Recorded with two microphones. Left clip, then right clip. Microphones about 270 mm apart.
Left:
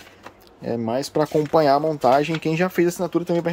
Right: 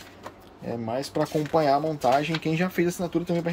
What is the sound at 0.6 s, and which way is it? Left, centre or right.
Speech, left.